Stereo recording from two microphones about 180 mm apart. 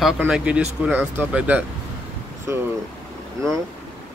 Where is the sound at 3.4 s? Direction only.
15° right (ahead or behind).